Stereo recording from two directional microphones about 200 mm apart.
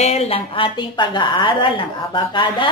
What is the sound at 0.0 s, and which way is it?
A woman's voice, 30° left (ahead or behind).